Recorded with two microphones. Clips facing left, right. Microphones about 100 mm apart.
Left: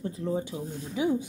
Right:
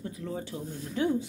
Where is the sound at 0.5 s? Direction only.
10° left (ahead or behind).